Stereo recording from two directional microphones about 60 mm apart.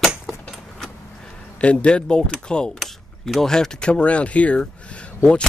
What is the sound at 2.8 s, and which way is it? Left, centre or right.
Speech, centre.